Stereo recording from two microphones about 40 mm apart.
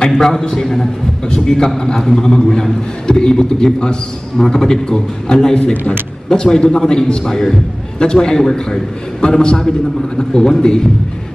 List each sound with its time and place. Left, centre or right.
0.2 s a man's voice: centre